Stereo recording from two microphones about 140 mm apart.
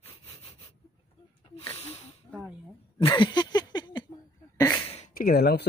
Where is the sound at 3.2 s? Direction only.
30° left (ahead or behind).